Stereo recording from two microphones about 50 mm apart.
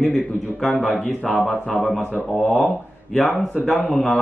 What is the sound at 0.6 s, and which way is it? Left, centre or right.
Speech, left.